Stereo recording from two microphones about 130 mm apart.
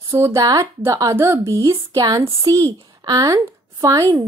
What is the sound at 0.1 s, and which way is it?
Speech, 20° right (ahead or behind).